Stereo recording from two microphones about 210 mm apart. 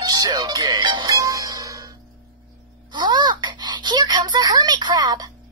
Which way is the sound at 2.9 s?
20° right (ahead or behind).